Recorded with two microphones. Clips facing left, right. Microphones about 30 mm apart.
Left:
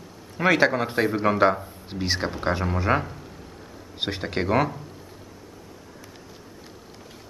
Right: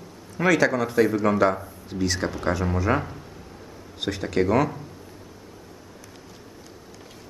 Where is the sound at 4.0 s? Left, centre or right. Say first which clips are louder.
Right 3 dB; left.